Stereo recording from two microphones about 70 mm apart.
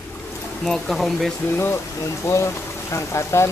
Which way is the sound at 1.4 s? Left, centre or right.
Left.